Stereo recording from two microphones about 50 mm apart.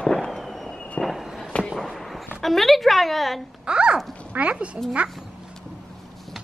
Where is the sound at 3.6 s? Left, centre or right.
Centre.